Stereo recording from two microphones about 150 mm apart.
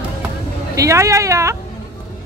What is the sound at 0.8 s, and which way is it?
Speech, 20° right (ahead or behind).